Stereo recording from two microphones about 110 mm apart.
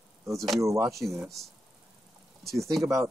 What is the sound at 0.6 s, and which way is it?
Speech, 30° right (ahead or behind).